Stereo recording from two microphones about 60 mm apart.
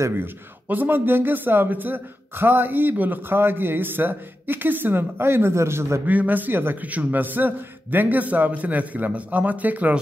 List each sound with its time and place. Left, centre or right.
0.1 s a man's voice: right
6.0 s a man's voice: right